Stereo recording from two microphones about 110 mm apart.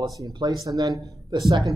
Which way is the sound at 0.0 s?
35° right (ahead or behind).